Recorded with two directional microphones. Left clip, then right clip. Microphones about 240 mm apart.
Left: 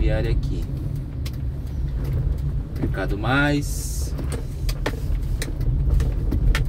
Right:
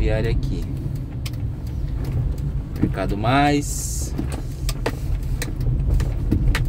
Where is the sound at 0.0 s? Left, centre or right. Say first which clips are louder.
Right 2 dB; right.